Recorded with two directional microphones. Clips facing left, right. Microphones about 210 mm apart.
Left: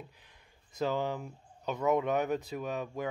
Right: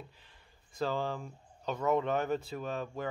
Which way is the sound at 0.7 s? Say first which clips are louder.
Left 2 dB; 15° left (ahead or behind).